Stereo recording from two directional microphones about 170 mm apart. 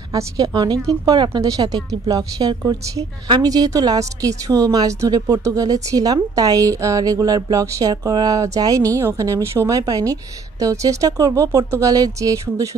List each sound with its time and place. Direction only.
0.1 s a woman's voice: 20° right (ahead or behind)